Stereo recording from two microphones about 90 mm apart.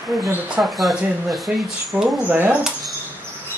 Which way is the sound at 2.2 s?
20° right (ahead or behind).